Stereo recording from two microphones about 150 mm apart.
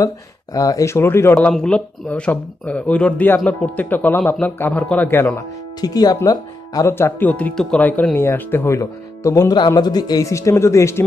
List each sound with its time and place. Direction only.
0.0 s speech: 25° left (ahead or behind)
1.5 s speech: 5° left (ahead or behind)